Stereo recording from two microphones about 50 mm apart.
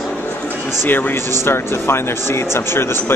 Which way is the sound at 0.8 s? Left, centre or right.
Left.